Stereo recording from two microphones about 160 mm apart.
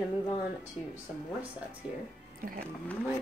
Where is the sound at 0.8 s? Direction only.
Centre (ahead or behind).